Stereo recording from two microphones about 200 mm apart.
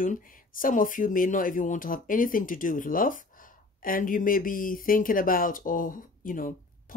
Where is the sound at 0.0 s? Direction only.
45° left (ahead or behind).